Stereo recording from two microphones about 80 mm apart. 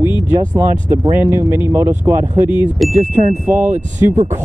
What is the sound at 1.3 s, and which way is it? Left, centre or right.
Speech, left.